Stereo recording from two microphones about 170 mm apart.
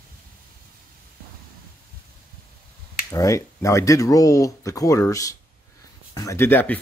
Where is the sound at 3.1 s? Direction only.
20° left (ahead or behind).